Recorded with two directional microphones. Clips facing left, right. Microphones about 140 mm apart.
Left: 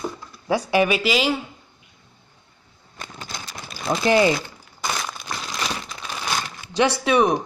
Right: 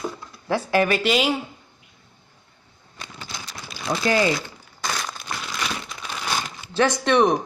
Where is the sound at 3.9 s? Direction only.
25° left (ahead or behind).